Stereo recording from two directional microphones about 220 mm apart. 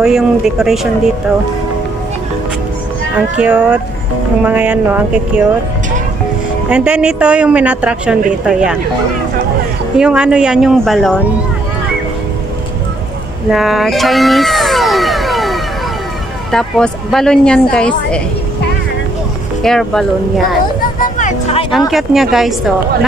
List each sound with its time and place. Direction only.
0.0 s a woman's voice: centre (ahead or behind)
3.2 s a sound: 5° right (ahead or behind)
6.7 s a woman's voice: 5° right (ahead or behind)
9.9 s a woman's voice: 5° right (ahead or behind)
13.5 s vehicle: centre (ahead or behind)
16.5 s a woman's voice: centre (ahead or behind)
19.6 s a woman's voice: centre (ahead or behind)
21.0 s music: 35° left (ahead or behind)
21.7 s a woman's voice: centre (ahead or behind)